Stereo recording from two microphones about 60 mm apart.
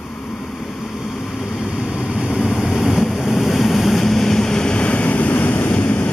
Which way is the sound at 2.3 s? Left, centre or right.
Centre.